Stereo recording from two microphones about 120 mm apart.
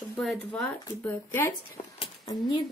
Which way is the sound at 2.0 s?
40° left (ahead or behind).